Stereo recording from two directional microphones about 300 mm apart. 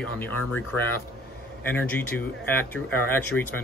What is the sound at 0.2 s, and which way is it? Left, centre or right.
Speech, centre.